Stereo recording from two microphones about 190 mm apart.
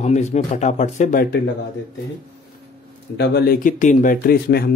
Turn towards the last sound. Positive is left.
turn(degrees=50)  # may be behind; listen again after turning